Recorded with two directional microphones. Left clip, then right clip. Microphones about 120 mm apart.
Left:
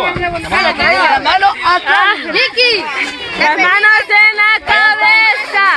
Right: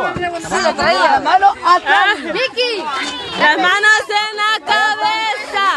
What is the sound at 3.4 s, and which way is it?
Speech, 10° right (ahead or behind).